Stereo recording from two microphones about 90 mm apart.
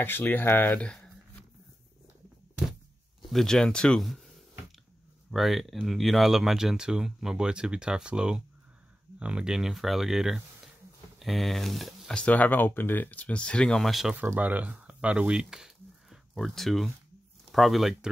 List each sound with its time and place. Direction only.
0.0 s speech: 20° left (ahead or behind)
3.3 s speech: 5° left (ahead or behind)
5.3 s speech: centre (ahead or behind)
12.2 s speech: 15° left (ahead or behind); by 14.1 s centre (ahead or behind)
14.1 s speech: 20° right (ahead or behind); by 18.1 s centre (ahead or behind)